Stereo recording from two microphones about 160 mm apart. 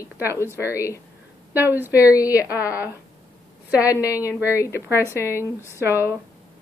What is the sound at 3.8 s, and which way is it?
Speech, 20° left (ahead or behind).